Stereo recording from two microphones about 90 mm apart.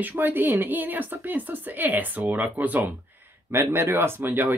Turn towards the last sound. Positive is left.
turn(degrees=-25)  # may be behind; listen again after turning